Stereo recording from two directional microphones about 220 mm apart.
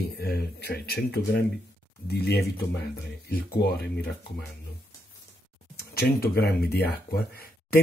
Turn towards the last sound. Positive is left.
turn(degrees=45)  # may be behind; listen again after turning